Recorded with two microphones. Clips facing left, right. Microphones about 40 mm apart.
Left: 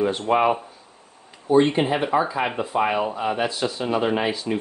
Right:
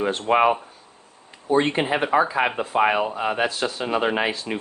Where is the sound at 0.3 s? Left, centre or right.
Right.